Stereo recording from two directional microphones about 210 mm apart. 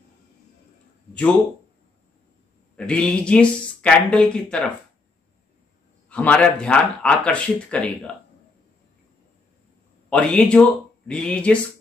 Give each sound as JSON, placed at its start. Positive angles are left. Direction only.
{"t": 2.7, "sound": "speech", "side_deg": 5}
{"t": 6.0, "sound": "speech", "side_deg": 5}
{"t": 10.0, "sound": "speech", "side_deg": 5}